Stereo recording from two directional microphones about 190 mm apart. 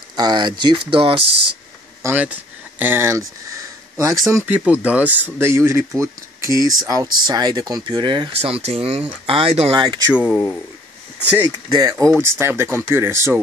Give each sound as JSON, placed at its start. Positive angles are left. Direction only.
{"t": 0.1, "sound": "speech", "side_deg": -20}
{"t": 2.0, "sound": "speech", "side_deg": -10}
{"t": 2.8, "sound": "a sound", "side_deg": -10}
{"t": 4.3, "sound": "speech", "side_deg": -15}
{"t": 10.1, "sound": "speech", "side_deg": -5}
{"t": 11.4, "sound": "speech", "side_deg": -20}